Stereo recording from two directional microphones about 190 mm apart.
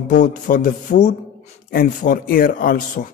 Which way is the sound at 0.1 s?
40° left (ahead or behind).